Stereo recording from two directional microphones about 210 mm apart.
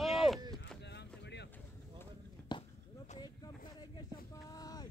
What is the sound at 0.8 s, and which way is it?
Boat, 55° left (ahead or behind).